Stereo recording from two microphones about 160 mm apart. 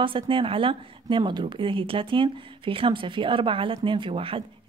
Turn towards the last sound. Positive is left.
turn(degrees=-35)  # may be behind; listen again after turning